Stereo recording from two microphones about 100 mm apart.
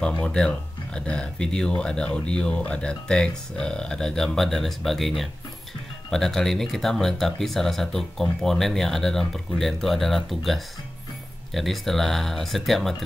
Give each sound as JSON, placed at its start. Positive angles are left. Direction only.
{"t": 0.2, "sound": "speech", "side_deg": 10}